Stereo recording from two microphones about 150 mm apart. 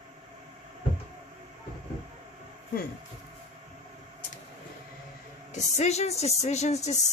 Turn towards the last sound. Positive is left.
turn(degrees=50)  # may be behind; listen again after turning